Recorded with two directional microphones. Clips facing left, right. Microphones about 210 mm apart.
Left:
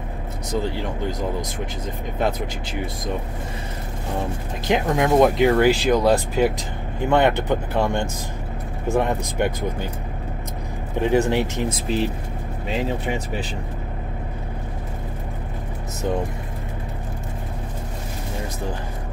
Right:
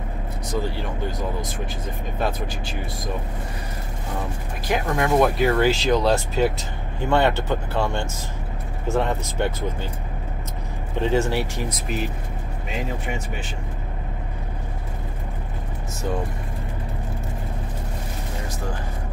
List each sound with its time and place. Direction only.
0.6 s speech: 20° left (ahead or behind)
4.6 s speech: 20° left (ahead or behind)
11.0 s speech: 15° left (ahead or behind); by 13.5 s 35° left (ahead or behind)